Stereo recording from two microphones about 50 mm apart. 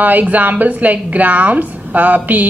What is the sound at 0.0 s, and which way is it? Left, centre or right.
Speech, right.